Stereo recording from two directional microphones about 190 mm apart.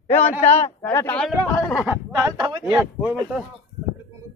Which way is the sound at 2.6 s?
5° right (ahead or behind).